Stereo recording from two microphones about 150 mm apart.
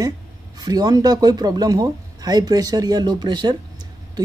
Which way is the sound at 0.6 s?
25° right (ahead or behind).